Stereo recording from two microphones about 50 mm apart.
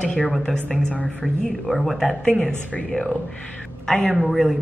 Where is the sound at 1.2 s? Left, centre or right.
Centre.